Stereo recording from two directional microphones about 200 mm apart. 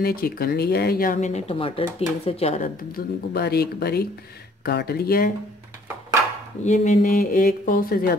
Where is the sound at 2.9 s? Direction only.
55° left (ahead or behind).